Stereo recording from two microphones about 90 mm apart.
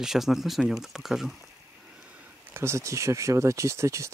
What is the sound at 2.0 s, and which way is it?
Speech, 20° right (ahead or behind).